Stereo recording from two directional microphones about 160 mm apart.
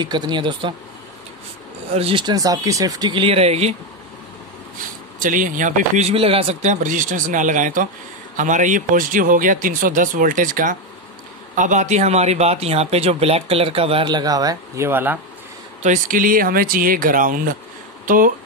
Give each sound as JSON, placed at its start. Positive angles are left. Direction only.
{"t": 0.0, "sound": "speech", "side_deg": -25}
{"t": 1.9, "sound": "speech", "side_deg": -40}
{"t": 5.2, "sound": "speech", "side_deg": -55}
{"t": 15.8, "sound": "speech", "side_deg": -55}